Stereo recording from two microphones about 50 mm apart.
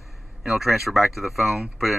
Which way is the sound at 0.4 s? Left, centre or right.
Centre.